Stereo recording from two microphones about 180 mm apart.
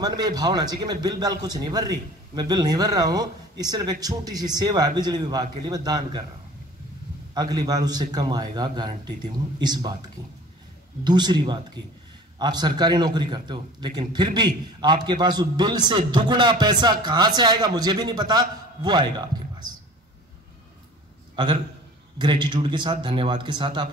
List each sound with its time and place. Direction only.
0.0 s a man's voice: 20° right (ahead or behind)
7.3 s a man's voice: 20° right (ahead or behind)
11.1 s a man's voice: 25° right (ahead or behind)
22.2 s a man's voice: 25° right (ahead or behind)